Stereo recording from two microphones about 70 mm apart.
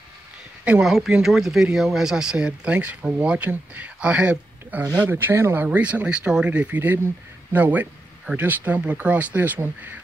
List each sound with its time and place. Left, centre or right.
0.8 s speech: centre; by 5.1 s right
5.1 s speech: right
5.7 s speech: centre